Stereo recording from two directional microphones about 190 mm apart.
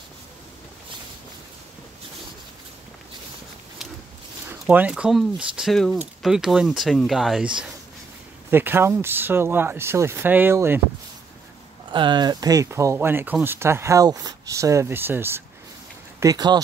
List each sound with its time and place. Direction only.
4.5 s speech: 10° right (ahead or behind)
11.9 s speech: 25° right (ahead or behind)